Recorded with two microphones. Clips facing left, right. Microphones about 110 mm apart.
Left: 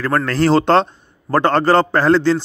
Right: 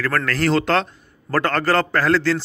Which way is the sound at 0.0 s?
25° left (ahead or behind).